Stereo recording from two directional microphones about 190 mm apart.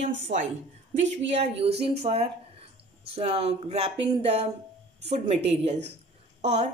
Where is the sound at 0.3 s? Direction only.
35° right (ahead or behind).